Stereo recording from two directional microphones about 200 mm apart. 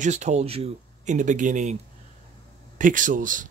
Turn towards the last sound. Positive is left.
turn(degrees=-40)  # may be behind; listen again after turning